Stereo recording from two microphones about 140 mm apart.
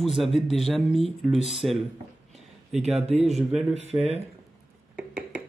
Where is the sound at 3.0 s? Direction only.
45° right (ahead or behind).